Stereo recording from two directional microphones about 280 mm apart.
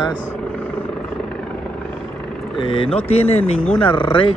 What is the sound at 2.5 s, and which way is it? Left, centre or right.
Speech, centre.